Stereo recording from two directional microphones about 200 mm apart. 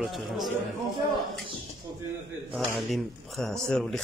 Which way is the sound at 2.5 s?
Centre (ahead or behind).